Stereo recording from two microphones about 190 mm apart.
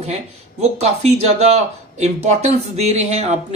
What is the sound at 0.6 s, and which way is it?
Speech, 35° right (ahead or behind).